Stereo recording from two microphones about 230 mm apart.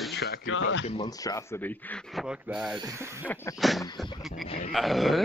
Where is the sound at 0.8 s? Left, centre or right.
Left; by 2.2 s centre.